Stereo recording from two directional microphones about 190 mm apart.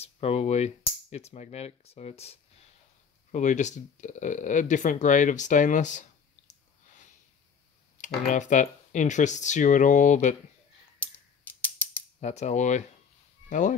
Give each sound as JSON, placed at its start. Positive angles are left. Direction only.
{"t": 0.0, "sound": "speech", "side_deg": 35}
{"t": 8.3, "sound": "speech", "side_deg": 40}
{"t": 12.2, "sound": "speech", "side_deg": 35}